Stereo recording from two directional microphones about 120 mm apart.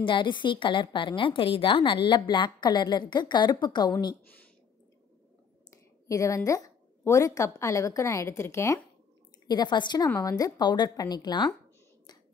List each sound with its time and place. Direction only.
0.0 s a woman's voice: 40° left (ahead or behind)
6.0 s a woman's voice: 25° left (ahead or behind)
9.5 s a woman's voice: 35° left (ahead or behind)
10.0 s a woman's voice: 25° left (ahead or behind)